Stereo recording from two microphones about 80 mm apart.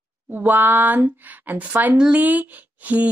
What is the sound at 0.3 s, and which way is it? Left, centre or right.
Speech, right.